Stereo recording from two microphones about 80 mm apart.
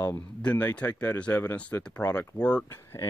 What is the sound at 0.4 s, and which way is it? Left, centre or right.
Speech, centre.